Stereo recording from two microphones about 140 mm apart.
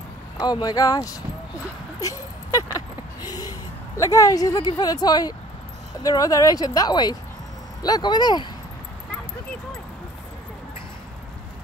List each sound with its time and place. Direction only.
0.4 s speech: 30° left (ahead or behind)
2.0 s a sound: 25° left (ahead or behind)
3.2 s a woman's voice: 25° left (ahead or behind)